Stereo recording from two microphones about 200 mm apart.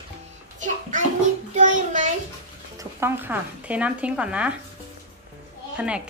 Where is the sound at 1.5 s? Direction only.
40° right (ahead or behind).